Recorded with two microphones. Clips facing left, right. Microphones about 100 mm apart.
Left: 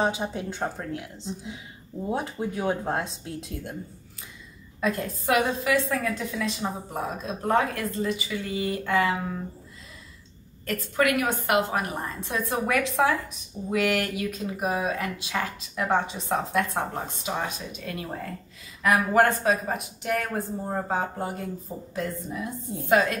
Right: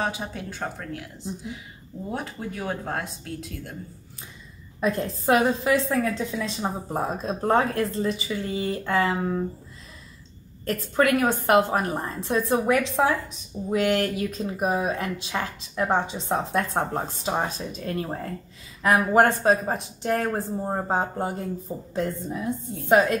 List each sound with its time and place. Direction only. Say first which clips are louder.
0.0 s speech: left 3 dB; 20° left (ahead or behind)
2.0 s speech: left 3 dB; 20° left (ahead or behind)
4.7 s a woman's voice: right 2 dB; 25° right (ahead or behind)
10.7 s a woman's voice: right 3 dB; 30° right (ahead or behind)
18.8 s a woman's voice: right 2 dB; 20° right (ahead or behind)